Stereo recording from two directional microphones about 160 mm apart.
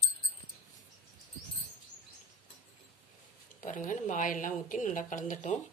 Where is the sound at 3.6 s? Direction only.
55° left (ahead or behind).